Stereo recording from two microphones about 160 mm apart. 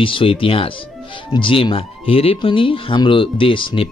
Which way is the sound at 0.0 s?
35° left (ahead or behind).